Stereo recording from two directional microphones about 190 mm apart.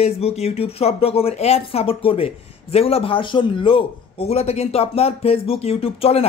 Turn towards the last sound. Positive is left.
turn(degrees=30)  # may be behind; listen again after turning